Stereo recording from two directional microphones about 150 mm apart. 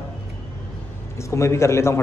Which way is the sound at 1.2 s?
20° left (ahead or behind).